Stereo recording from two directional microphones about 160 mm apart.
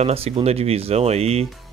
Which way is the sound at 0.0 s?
40° right (ahead or behind).